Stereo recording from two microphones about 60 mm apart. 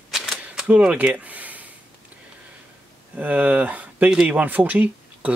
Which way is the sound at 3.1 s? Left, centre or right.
Right.